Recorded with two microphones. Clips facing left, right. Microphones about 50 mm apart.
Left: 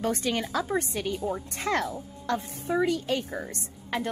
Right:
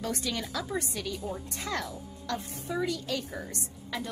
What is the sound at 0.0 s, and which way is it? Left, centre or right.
A woman's voice, left.